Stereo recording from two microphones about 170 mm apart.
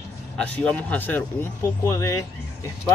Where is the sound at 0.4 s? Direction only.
5° left (ahead or behind).